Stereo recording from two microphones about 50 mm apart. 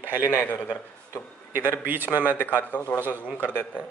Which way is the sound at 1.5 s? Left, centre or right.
Right.